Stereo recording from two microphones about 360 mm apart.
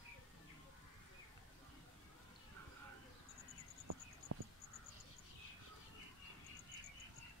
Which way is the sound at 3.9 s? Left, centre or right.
Right.